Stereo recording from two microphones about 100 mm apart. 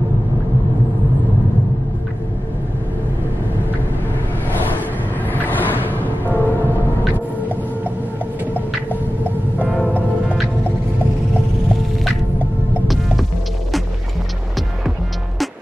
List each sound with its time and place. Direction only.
5.3 s music: 20° left (ahead or behind)
12.8 s music: centre (ahead or behind)